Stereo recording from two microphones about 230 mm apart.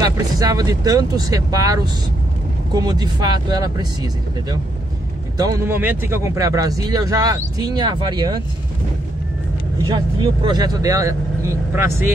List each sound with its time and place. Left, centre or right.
0.0 s speech: centre
9.8 s speech: centre